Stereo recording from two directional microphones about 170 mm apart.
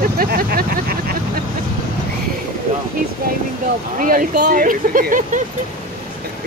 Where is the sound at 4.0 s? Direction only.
55° right (ahead or behind).